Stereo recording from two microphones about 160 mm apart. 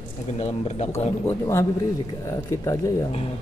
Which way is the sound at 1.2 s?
20° left (ahead or behind).